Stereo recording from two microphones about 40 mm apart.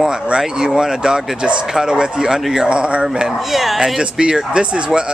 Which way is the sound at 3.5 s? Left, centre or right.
Centre.